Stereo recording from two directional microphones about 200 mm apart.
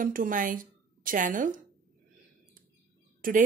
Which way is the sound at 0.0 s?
45° right (ahead or behind).